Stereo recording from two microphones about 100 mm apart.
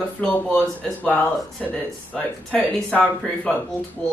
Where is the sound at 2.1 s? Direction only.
10° left (ahead or behind).